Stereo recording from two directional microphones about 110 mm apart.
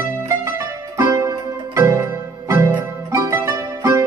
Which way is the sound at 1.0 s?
30° right (ahead or behind).